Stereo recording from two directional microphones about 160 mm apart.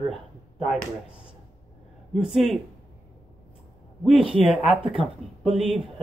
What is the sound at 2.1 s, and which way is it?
Speech, 5° right (ahead or behind).